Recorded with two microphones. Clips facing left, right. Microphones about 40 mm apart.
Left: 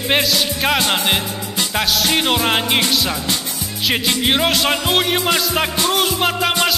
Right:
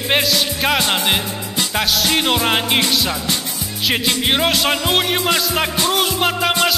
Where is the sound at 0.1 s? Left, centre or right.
Centre.